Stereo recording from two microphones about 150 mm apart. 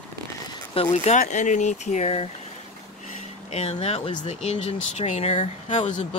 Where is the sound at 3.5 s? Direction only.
45° left (ahead or behind).